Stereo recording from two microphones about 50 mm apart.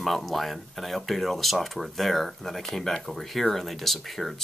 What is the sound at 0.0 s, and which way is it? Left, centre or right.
Speech, centre.